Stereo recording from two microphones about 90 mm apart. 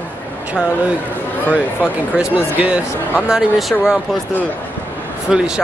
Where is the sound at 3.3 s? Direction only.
5° right (ahead or behind).